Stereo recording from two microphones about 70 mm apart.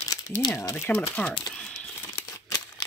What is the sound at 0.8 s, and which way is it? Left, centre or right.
Speech, left.